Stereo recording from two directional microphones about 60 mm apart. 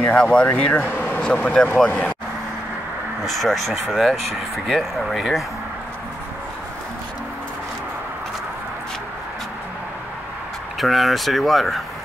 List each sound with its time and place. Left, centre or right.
0.1 s speech: centre
1.2 s speech: centre
3.3 s speech: centre
10.8 s speech: centre